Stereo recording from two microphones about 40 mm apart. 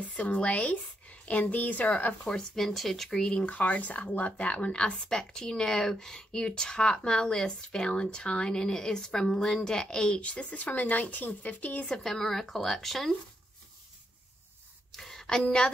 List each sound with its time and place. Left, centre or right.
0.0 s speech: left
2.2 s speech: centre
2.6 s speech: centre
3.2 s speech: left
3.4 s speech: left; by 10.2 s centre
10.2 s speech: left
12.0 s speech: centre
14.9 s a sound: centre
15.2 s speech: left